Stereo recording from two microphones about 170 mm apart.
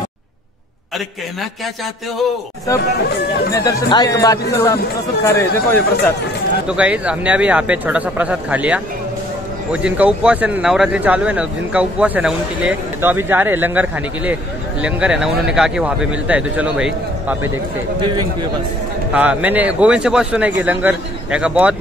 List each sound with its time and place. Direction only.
3.5 s speech: 20° left (ahead or behind)
6.7 s speech: 5° right (ahead or behind)
19.1 s speech: 10° right (ahead or behind)